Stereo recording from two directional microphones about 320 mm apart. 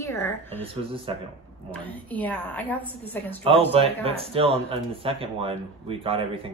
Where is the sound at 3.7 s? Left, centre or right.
Centre.